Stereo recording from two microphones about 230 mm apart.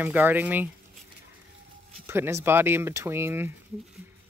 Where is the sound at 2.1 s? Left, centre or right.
Centre.